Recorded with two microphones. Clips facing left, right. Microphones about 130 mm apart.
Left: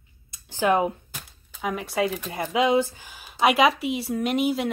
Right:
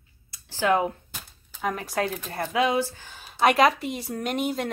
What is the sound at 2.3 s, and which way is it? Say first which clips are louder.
Speech: left 2 dB; 15° left (ahead or behind).